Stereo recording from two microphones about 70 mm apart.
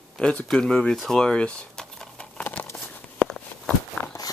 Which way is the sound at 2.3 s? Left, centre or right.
Left.